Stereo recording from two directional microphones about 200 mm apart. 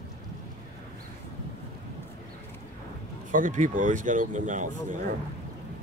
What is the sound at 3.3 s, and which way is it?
Speech, 40° right (ahead or behind).